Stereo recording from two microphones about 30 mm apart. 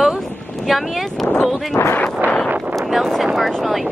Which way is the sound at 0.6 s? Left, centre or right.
Centre.